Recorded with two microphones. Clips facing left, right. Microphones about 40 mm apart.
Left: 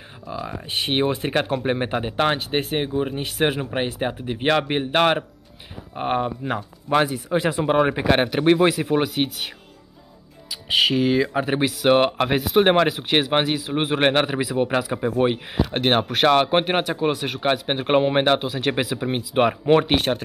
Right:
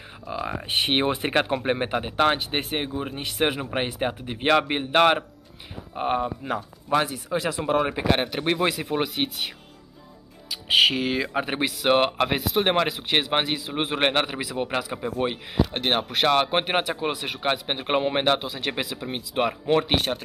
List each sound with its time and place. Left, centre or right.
0.3 s speech: centre
6.4 s speech: left
7.5 s speech: left
7.8 s speech: centre
8.5 s speech: centre
10.5 s speech: centre; by 16.1 s left
16.1 s speech: centre
18.9 s speech: left
19.9 s speech: centre